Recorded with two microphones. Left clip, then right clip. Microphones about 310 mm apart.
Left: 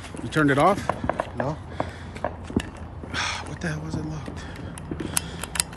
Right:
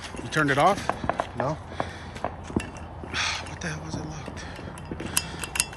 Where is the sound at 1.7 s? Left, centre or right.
Centre.